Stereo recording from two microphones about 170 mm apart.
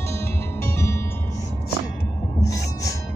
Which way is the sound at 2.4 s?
20° left (ahead or behind).